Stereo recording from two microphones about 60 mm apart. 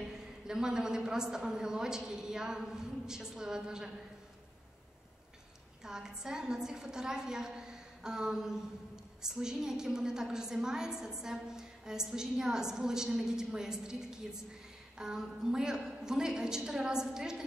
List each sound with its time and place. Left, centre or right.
0.0 s a woman's voice: centre
5.9 s a woman's voice: centre